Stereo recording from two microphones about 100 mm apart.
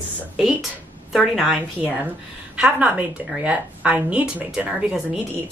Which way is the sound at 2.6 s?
15° right (ahead or behind).